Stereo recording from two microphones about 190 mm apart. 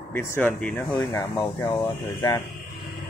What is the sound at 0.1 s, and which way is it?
Speech, 10° left (ahead or behind).